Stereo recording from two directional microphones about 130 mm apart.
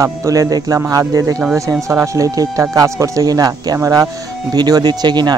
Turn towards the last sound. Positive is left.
turn(degrees=-35)  # may be behind; listen again after turning